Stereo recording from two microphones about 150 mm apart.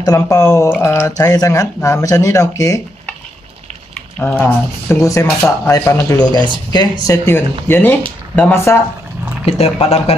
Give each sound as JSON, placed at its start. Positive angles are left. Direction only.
{"t": 0.0, "sound": "speech", "side_deg": 25}
{"t": 4.2, "sound": "speech", "side_deg": 15}
{"t": 9.5, "sound": "speech", "side_deg": 40}